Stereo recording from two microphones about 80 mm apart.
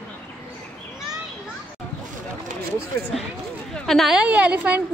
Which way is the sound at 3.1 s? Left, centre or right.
Centre.